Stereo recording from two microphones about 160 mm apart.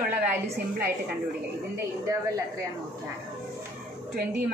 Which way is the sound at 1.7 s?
20° right (ahead or behind).